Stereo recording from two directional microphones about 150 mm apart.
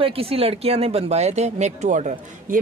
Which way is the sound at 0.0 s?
40° right (ahead or behind).